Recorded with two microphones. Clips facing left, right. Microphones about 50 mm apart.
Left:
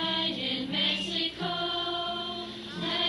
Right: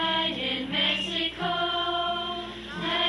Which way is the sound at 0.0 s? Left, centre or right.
Right.